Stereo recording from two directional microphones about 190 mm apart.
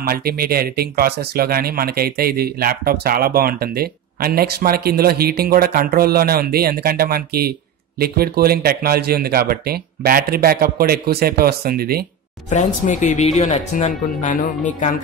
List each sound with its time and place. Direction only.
0.0 s speech: 50° right (ahead or behind)
12.4 s speech: 40° left (ahead or behind)